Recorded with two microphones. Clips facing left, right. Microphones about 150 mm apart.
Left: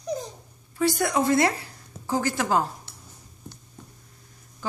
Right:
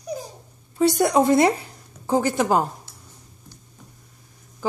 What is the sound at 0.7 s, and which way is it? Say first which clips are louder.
Speech: right 5 dB; 25° right (ahead or behind).